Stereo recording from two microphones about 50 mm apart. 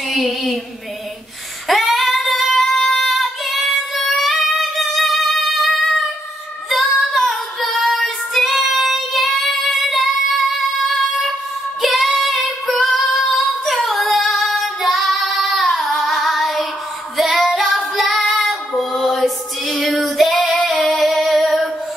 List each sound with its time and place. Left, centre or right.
0.1 s a sound: centre
1.7 s female singing: centre
3.2 s female singing: centre
7.0 s child singing: centre
11.8 s female singing: centre
17.2 s child singing: centre
18.9 s music: centre
20.2 s female singing: centre